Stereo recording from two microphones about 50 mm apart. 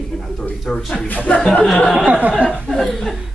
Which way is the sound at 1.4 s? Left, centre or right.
Centre.